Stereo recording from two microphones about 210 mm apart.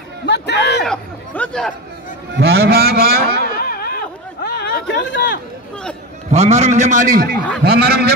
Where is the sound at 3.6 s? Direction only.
45° left (ahead or behind).